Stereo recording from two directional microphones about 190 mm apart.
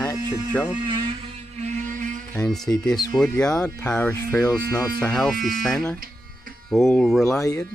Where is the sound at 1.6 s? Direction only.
45° right (ahead or behind).